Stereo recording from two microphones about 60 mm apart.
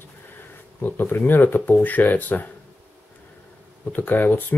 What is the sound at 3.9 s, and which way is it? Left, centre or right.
Speech, left.